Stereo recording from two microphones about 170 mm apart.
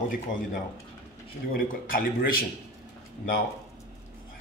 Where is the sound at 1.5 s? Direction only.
55° left (ahead or behind).